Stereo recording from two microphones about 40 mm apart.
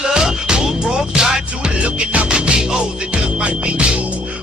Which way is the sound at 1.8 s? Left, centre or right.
Right.